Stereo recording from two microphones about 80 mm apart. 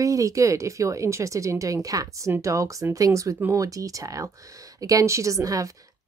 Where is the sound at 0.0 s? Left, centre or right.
Right.